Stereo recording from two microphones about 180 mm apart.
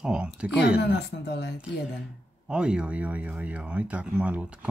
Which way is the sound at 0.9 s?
70° left (ahead or behind).